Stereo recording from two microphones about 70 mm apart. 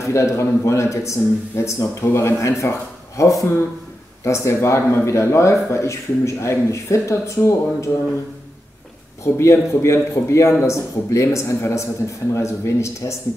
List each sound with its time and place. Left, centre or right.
0.0 s a man's voice: left
9.2 s a man's voice: left